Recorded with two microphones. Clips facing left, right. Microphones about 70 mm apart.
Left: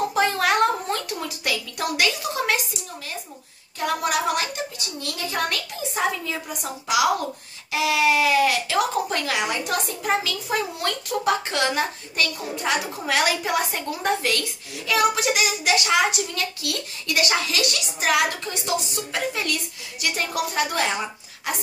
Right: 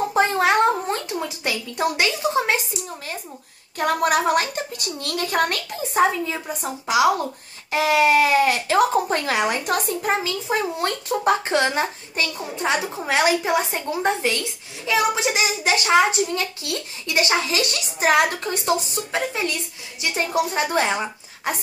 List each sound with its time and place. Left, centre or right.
0.1 s a sound: right
3.7 s a woman's voice: right
6.2 s a child's voice: right